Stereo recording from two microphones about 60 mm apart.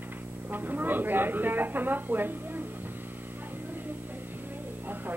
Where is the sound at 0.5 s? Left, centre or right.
Right.